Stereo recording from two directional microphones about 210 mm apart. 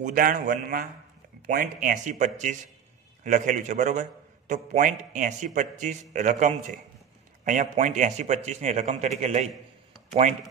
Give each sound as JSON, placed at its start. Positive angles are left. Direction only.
{"t": 0.0, "sound": "a man's voice", "side_deg": -40}